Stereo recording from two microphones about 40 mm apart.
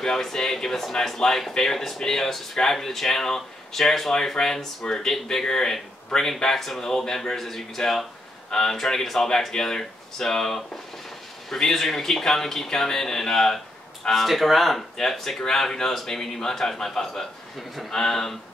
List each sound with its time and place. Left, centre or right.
0.0 s speech: centre
17.9 s speech: centre